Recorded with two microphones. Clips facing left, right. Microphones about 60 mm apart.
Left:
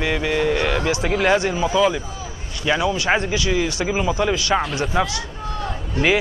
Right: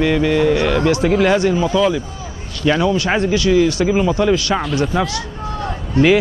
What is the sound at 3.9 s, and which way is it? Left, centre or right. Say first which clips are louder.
Speech: right 5 dB; centre.